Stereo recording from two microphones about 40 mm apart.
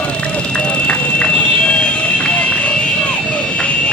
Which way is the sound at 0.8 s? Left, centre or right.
Left.